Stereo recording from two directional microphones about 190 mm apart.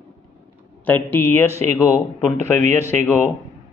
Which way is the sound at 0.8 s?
10° left (ahead or behind).